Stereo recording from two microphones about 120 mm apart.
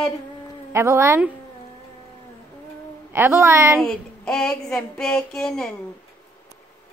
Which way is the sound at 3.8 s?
5° left (ahead or behind).